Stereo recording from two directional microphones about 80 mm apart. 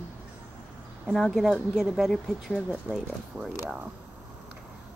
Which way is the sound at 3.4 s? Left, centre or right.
Right.